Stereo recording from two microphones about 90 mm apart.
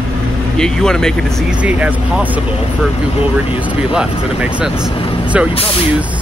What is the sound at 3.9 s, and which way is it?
Speech, 10° right (ahead or behind).